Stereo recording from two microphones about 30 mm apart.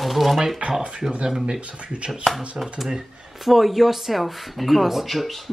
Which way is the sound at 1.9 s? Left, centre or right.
Right.